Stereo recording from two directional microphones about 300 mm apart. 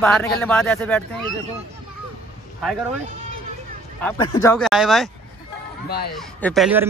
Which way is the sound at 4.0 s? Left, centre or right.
Centre.